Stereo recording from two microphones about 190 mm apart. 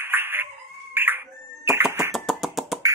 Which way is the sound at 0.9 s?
10° right (ahead or behind).